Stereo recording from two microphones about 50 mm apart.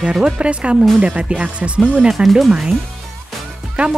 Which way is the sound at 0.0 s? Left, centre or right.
Centre.